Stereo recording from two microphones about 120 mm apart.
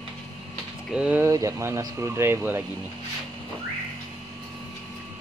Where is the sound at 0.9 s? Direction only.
10° right (ahead or behind).